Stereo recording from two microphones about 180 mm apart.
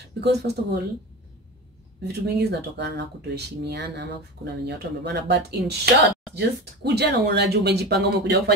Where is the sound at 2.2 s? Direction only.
75° right (ahead or behind).